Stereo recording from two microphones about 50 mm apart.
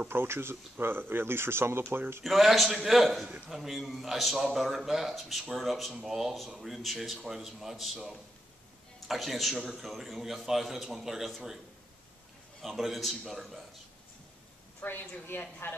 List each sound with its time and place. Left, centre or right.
0.1 s speech: right
2.2 s a man's voice: centre
12.6 s a man's voice: centre
14.9 s a woman's voice: left